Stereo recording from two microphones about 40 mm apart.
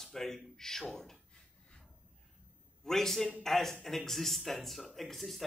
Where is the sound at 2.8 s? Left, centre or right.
Centre.